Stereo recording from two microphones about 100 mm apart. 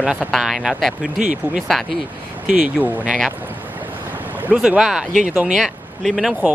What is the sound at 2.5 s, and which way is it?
Speech, 15° right (ahead or behind).